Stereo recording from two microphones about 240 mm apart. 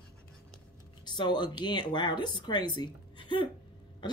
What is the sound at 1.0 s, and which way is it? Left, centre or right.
Speech, centre.